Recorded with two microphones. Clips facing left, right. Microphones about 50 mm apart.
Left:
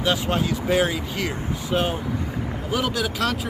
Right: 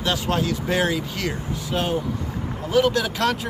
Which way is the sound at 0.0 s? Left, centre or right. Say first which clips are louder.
Left 1 dB; centre.